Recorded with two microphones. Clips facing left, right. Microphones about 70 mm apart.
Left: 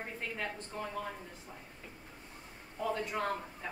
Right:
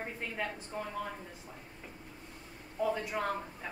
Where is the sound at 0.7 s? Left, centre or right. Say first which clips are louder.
Right 2 dB; centre.